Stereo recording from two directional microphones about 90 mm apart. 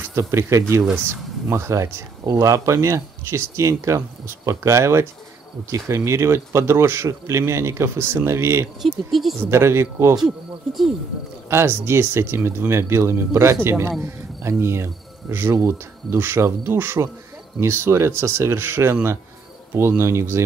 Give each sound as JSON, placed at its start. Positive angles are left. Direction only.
{"t": 0.1, "sound": "a man's voice", "side_deg": -30}
{"t": 8.8, "sound": "speech", "side_deg": 0}
{"t": 9.4, "sound": "speech", "side_deg": -30}
{"t": 10.2, "sound": "speech", "side_deg": -5}
{"t": 11.5, "sound": "speech", "side_deg": -25}